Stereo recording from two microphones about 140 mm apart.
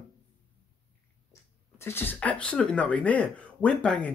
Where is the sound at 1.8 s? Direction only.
15° left (ahead or behind).